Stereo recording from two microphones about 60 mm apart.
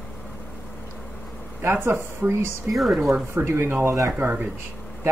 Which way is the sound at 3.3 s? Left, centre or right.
Right.